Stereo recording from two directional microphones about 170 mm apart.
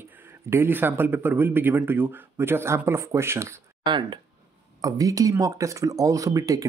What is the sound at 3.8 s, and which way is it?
Speech, 25° right (ahead or behind).